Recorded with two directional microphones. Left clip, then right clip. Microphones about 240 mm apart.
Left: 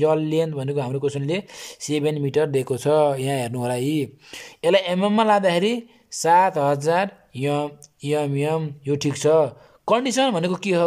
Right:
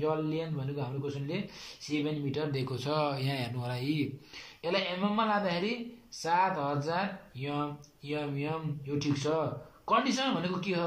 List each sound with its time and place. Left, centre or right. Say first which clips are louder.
0.0 s speech: left 12 dB; left